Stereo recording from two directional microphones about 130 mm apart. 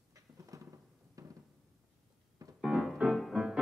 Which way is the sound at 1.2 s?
25° right (ahead or behind).